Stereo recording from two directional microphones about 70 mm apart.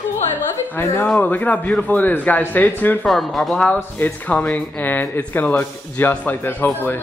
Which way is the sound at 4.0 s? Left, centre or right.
Left.